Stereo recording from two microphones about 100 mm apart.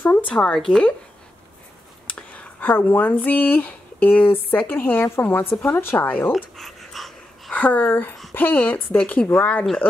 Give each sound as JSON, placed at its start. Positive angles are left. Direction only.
{"t": 0.0, "sound": "speech", "side_deg": 15}
{"t": 2.0, "sound": "a woman's voice", "side_deg": 15}
{"t": 6.3, "sound": "dog", "side_deg": 0}
{"t": 7.5, "sound": "a woman's voice", "side_deg": 15}